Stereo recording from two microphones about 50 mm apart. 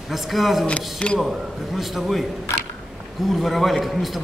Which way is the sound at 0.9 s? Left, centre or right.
Centre.